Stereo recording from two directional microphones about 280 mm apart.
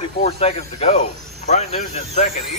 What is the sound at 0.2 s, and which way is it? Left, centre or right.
Speech, left.